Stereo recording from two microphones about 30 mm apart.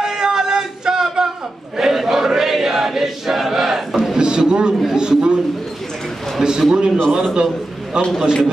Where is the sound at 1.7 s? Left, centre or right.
Centre.